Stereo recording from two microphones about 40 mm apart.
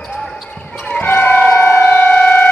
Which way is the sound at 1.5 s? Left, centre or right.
Left.